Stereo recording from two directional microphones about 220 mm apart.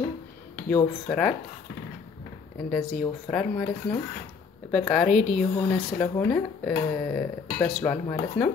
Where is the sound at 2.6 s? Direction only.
5° left (ahead or behind).